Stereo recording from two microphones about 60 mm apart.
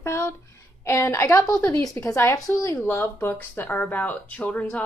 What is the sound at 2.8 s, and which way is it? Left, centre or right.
Speech, left.